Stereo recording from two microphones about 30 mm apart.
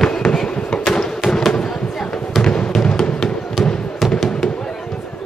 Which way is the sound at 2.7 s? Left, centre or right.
Left.